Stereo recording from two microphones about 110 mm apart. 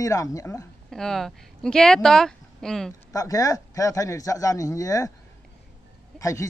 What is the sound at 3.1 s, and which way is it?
Speech, 30° left (ahead or behind).